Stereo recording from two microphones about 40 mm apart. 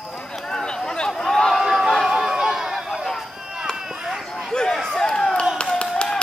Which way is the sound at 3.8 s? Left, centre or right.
Centre.